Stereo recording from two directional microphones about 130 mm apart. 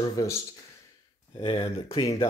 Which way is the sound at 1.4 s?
45° left (ahead or behind).